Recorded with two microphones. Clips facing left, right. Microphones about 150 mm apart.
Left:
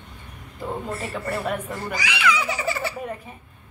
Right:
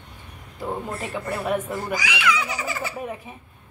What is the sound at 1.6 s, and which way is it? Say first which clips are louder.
Speech: right 2 dB; centre (ahead or behind).